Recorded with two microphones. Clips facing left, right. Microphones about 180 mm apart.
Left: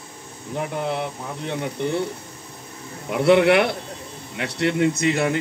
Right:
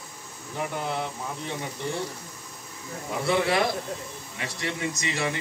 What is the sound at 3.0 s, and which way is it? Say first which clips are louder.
Speech: left 9 dB; 70° left (ahead or behind).